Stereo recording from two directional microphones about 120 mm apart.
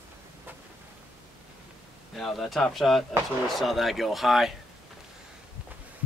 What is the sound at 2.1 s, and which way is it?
Speech, centre (ahead or behind).